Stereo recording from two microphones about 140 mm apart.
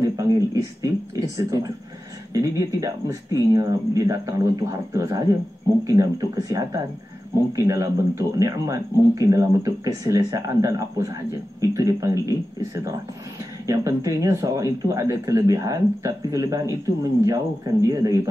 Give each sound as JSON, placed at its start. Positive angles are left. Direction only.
{"t": 0.0, "sound": "speech", "side_deg": -25}